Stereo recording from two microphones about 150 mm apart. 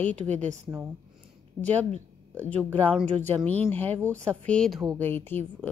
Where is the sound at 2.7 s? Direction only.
10° left (ahead or behind).